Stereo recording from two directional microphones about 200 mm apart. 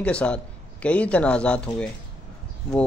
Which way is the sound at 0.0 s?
5° left (ahead or behind).